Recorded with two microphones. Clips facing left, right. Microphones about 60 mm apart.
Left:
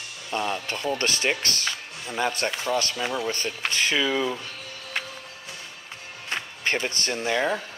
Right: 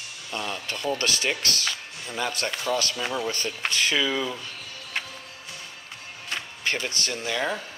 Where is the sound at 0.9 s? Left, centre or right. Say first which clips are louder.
Left 3 dB; left.